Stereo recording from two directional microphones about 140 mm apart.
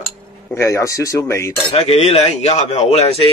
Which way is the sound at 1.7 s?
45° left (ahead or behind).